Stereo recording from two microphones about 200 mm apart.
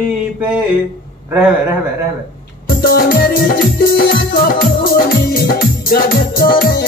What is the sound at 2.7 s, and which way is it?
Music, 50° left (ahead or behind).